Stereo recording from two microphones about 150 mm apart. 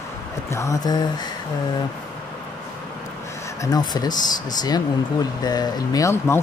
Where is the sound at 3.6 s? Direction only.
25° left (ahead or behind).